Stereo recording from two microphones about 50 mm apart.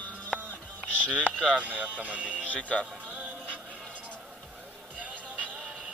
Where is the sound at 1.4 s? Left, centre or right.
Right.